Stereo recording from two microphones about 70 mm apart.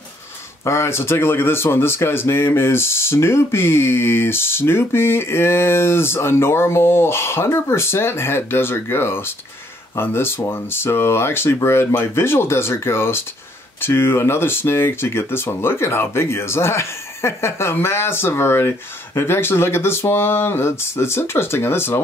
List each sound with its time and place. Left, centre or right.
0.7 s speech: left